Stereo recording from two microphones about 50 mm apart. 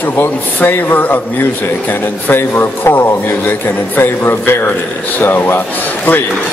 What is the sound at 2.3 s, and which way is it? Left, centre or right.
Speech, left.